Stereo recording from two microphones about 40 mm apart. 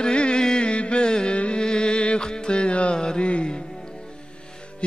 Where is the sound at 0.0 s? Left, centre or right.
Left.